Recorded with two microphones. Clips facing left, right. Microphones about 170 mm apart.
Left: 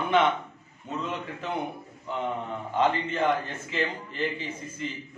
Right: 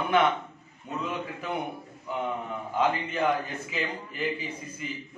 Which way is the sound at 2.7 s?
10° right (ahead or behind).